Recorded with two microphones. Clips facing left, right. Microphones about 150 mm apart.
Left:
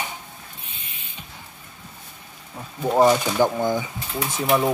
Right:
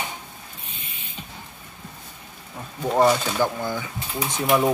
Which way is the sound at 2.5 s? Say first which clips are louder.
Left 2 dB; 5° left (ahead or behind).